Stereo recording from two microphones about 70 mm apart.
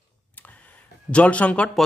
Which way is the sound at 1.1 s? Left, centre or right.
Centre.